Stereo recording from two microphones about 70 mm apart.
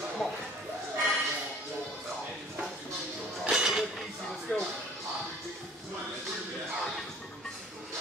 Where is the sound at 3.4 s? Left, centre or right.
Centre.